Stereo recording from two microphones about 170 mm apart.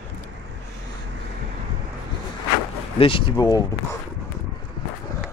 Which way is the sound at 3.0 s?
30° left (ahead or behind).